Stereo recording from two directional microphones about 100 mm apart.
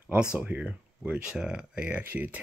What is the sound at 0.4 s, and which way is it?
Speech, 15° right (ahead or behind).